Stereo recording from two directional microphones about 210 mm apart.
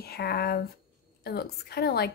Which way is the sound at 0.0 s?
50° left (ahead or behind).